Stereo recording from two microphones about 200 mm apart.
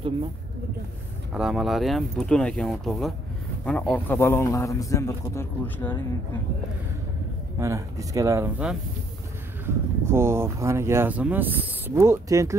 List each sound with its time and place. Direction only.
1.3 s a man's voice: centre (ahead or behind)
7.5 s speech: 15° right (ahead or behind)
9.7 s speech: 10° right (ahead or behind)